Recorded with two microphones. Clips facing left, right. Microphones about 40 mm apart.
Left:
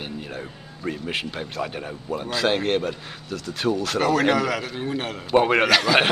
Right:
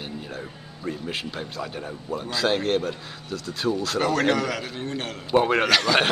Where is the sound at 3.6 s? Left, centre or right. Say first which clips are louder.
Left 2 dB; centre.